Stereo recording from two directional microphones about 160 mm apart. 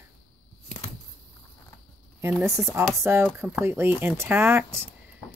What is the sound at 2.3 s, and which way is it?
Speech, 5° right (ahead or behind).